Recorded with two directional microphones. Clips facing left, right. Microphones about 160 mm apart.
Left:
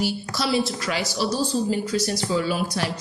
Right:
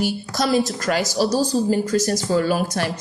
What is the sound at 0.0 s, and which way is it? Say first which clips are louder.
A woman's voice: right 3 dB; 45° right (ahead or behind).